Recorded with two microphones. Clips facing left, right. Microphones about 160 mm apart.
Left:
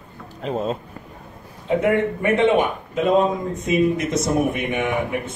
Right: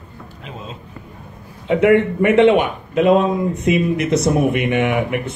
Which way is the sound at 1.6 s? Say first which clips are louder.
Right 5 dB; 75° right (ahead or behind).